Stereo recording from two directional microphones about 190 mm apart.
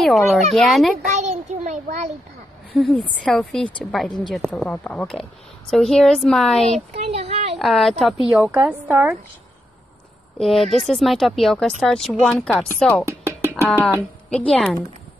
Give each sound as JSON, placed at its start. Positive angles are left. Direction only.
{"t": 0.0, "sound": "a woman's voice", "side_deg": 0}
{"t": 1.1, "sound": "a sound", "side_deg": -35}
{"t": 2.7, "sound": "a woman's voice", "side_deg": 5}
{"t": 6.7, "sound": "speech", "side_deg": -35}
{"t": 7.5, "sound": "a woman's voice", "side_deg": 0}
{"t": 10.4, "sound": "a woman's voice", "side_deg": 0}
{"t": 13.0, "sound": "music", "side_deg": -15}
{"t": 14.5, "sound": "a woman's voice", "side_deg": 0}